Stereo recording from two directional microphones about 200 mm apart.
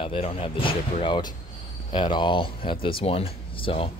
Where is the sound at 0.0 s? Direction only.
25° left (ahead or behind).